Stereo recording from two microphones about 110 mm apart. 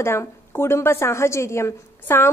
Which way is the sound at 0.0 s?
25° left (ahead or behind).